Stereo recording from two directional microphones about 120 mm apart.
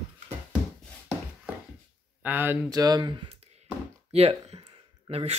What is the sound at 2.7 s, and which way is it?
Speech, 35° right (ahead or behind).